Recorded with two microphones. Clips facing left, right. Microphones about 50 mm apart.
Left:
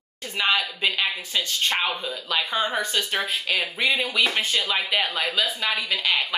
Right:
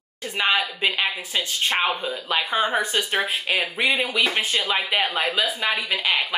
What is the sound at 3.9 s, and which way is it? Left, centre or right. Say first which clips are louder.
A woman's voice: even; centre.